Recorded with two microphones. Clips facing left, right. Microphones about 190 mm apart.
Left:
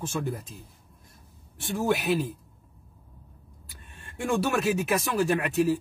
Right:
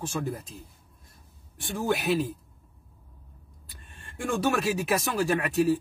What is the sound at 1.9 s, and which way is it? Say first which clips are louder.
Speech: even; centre (ahead or behind).